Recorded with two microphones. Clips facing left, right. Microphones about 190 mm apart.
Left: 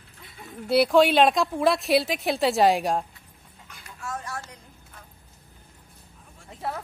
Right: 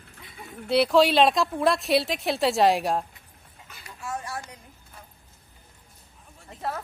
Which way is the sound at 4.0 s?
15° right (ahead or behind).